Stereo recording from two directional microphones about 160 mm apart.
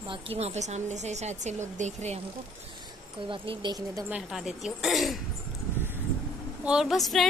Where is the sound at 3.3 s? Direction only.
30° right (ahead or behind).